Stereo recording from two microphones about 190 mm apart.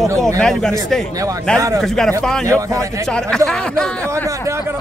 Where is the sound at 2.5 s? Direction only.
15° right (ahead or behind).